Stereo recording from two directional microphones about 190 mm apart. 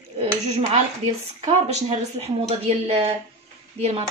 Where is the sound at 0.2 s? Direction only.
30° right (ahead or behind).